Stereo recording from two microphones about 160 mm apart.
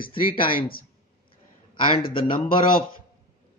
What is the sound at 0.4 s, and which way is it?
Speech, 60° left (ahead or behind).